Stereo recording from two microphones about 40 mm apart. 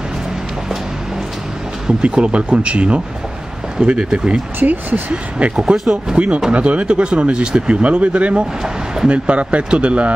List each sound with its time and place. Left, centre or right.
1.9 s speech: right
4.6 s speech: right
5.6 s speech: centre
6.1 s speech: right